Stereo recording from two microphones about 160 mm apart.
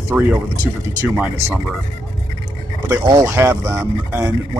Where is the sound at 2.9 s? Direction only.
20° right (ahead or behind).